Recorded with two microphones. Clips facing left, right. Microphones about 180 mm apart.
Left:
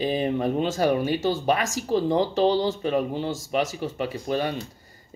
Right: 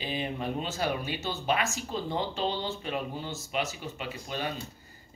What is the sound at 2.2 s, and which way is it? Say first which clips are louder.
Speech: left 10 dB; 40° left (ahead or behind).